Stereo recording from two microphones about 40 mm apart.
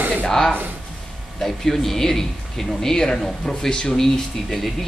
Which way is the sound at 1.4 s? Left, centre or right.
Centre.